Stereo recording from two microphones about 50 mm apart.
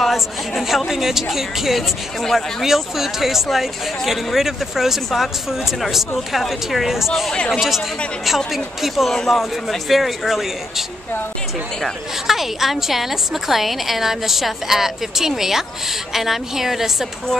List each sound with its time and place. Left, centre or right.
0.0 s speech: centre
8.8 s speech: centre
12.3 s speech: centre